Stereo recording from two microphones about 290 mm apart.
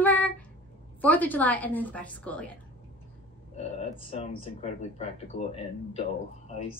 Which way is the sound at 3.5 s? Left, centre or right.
Centre.